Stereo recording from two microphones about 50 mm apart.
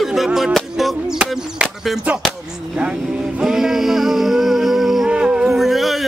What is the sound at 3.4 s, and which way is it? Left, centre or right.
Music, centre.